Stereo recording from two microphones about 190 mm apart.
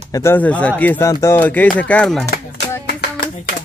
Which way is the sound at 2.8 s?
55° left (ahead or behind).